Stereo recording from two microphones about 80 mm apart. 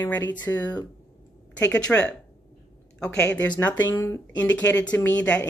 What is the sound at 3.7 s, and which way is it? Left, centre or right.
Speech, left.